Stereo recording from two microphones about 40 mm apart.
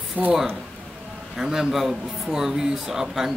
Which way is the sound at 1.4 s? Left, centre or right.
Centre.